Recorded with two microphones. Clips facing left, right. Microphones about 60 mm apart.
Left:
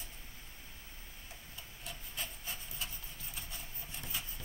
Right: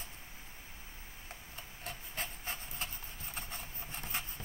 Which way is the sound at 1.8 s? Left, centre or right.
Right.